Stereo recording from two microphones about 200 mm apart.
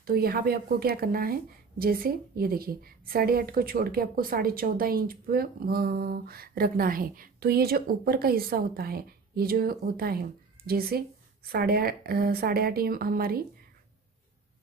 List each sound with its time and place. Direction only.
0.0 s speech: 50° right (ahead or behind)